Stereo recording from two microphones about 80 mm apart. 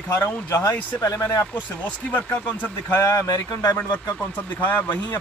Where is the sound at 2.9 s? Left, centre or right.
Left.